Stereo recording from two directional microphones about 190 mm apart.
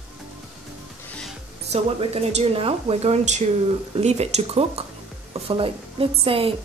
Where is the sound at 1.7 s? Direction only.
35° right (ahead or behind).